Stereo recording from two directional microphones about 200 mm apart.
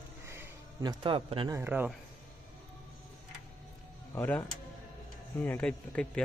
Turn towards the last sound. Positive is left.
turn(degrees=5)  # may be behind; listen again after turning